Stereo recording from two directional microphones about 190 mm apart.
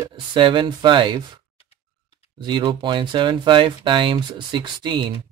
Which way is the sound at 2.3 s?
25° right (ahead or behind).